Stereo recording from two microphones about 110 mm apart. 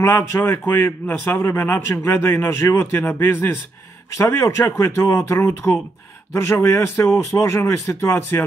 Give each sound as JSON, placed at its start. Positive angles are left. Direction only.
{"t": 0.0, "sound": "a man's voice", "side_deg": 25}